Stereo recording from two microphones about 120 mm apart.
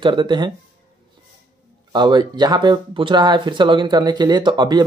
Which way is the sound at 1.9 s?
40° right (ahead or behind).